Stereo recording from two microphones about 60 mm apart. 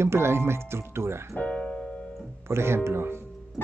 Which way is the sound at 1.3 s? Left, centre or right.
Left.